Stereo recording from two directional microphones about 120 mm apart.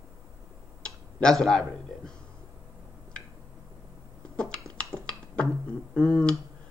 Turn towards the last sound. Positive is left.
turn(degrees=5)  # may be behind; listen again after turning